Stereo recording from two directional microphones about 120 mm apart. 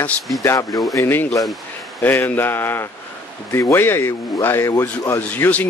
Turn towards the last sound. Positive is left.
turn(degrees=15)  # may be behind; listen again after turning